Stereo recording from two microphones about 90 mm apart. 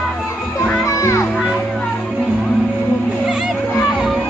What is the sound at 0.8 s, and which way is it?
Music, 35° left (ahead or behind).